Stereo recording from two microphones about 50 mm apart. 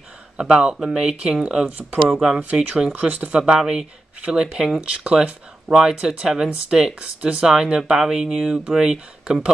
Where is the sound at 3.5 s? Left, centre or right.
Centre.